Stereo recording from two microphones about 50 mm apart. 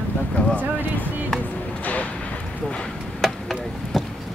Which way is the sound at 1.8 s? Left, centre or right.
Left.